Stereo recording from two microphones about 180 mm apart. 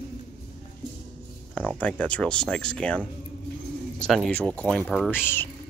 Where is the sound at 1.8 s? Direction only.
5° left (ahead or behind).